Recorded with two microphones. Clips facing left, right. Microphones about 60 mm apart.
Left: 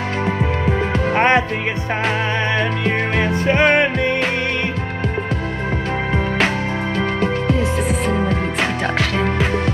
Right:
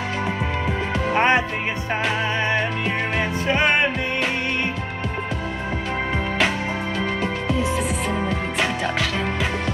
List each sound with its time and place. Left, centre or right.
1.1 s music: left
3.4 s music: left
7.2 s music: centre